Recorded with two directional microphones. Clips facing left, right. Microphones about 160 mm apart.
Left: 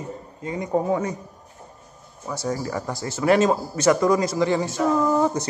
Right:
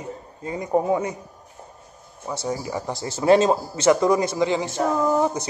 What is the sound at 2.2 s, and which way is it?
Speech, 20° right (ahead or behind).